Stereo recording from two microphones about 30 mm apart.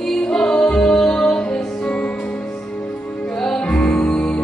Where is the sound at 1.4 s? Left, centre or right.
Left.